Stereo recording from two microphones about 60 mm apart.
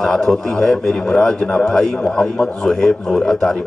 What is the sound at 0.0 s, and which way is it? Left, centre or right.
A man's voice, centre.